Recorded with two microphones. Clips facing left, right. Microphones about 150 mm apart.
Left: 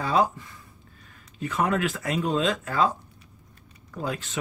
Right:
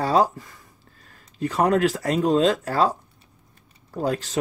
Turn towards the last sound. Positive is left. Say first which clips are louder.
# right 6 dB
turn(degrees=-35)  # may be behind; listen again after turning